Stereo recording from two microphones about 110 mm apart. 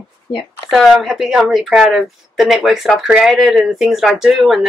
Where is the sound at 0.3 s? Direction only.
45° left (ahead or behind).